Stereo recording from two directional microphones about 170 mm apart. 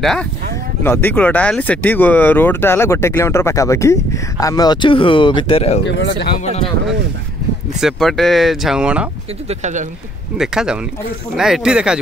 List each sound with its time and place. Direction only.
0.0 s speech: centre (ahead or behind)
0.8 s speech: 10° left (ahead or behind); by 5.8 s 35° left (ahead or behind)
5.9 s speech: 90° left
7.8 s speech: centre (ahead or behind)
9.5 s speech: 45° right (ahead or behind)
10.3 s speech: 5° right (ahead or behind)